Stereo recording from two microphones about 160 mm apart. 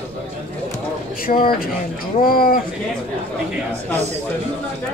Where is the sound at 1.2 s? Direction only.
65° left (ahead or behind).